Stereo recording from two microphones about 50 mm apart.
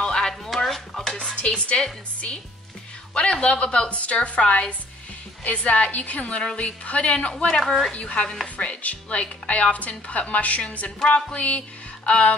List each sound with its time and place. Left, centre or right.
0.0 s a sound: centre
0.5 s dishes: centre
1.1 s dishes: centre
3.2 s speech: centre
7.6 s a woman's voice: centre
7.9 s speech: left